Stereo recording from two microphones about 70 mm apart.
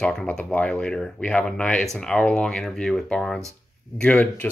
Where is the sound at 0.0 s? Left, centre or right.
Centre.